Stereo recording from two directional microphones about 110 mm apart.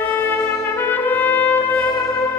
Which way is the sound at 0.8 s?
15° left (ahead or behind).